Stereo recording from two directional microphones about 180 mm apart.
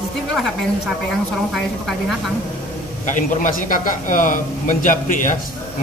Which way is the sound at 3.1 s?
45° left (ahead or behind).